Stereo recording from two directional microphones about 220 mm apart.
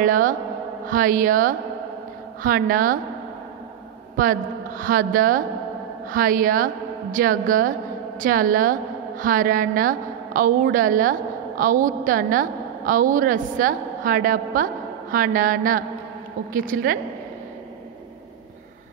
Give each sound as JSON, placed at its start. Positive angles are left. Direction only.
{"t": 0.0, "sound": "a woman's voice", "side_deg": -35}
{"t": 4.2, "sound": "a woman's voice", "side_deg": -40}